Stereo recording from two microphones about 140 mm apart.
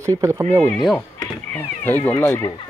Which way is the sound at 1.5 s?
15° left (ahead or behind).